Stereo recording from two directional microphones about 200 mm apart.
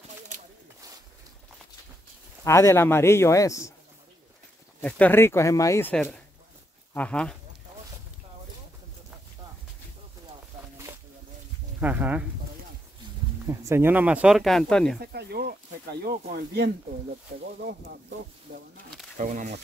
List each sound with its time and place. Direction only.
2.4 s speech: 15° left (ahead or behind)
4.8 s speech: 5° left (ahead or behind)
11.8 s speech: 10° right (ahead or behind)
13.5 s speech: 15° right (ahead or behind); by 15.0 s 5° left (ahead or behind)
15.0 s speech: 55° right (ahead or behind)
19.1 s speech: 40° right (ahead or behind)